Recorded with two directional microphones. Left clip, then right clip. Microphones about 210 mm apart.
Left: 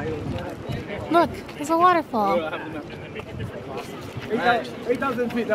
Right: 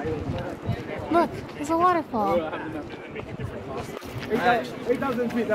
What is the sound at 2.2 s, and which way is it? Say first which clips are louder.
Speech: left 2 dB; 25° left (ahead or behind).